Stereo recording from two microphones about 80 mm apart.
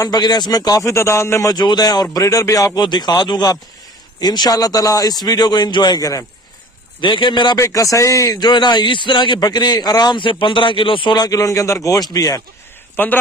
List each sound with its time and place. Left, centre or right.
0.0 s a man's voice: left
1.5 s a man's voice: left
2.8 s speech: left
5.9 s a man's voice: left
7.0 s a man's voice: left
7.5 s a man's voice: left
8.4 s speech: left
10.1 s speech: left
11.2 s a man's voice: left
12.9 s speech: left